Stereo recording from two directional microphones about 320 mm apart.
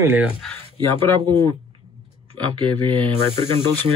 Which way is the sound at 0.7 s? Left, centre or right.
Centre.